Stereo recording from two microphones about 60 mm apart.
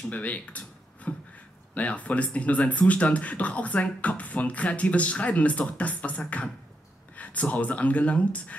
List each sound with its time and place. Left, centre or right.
0.1 s speech: left